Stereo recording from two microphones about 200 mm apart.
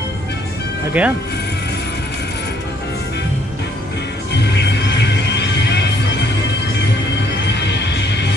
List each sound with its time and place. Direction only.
1.0 s speech: 5° right (ahead or behind)
4.3 s music: 55° left (ahead or behind)
7.4 s music: 60° left (ahead or behind)